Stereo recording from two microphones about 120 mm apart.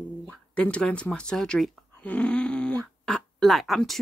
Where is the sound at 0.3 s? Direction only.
10° left (ahead or behind).